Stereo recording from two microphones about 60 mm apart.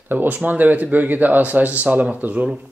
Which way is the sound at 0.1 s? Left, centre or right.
Right.